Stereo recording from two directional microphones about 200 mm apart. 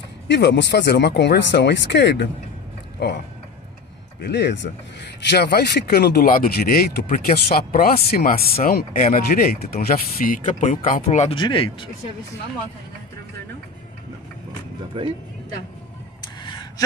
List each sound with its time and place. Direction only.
0.3 s speech: 60° left (ahead or behind)
4.2 s speech: 55° left (ahead or behind); by 11.9 s 25° left (ahead or behind)
15.0 s speech: 25° right (ahead or behind)
16.2 s a sound: 20° left (ahead or behind)